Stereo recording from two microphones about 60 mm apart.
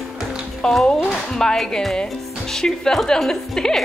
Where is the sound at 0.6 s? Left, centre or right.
Centre.